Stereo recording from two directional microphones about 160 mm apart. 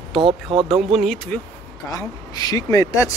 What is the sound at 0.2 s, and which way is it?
Speech, 35° right (ahead or behind).